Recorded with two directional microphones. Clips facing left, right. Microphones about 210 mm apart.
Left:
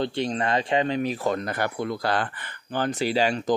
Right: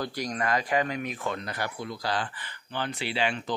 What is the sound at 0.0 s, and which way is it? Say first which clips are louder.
Speech: left 5 dB; 25° left (ahead or behind).